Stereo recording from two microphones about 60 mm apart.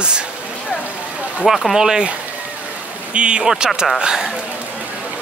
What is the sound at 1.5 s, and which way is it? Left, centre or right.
Speech, centre.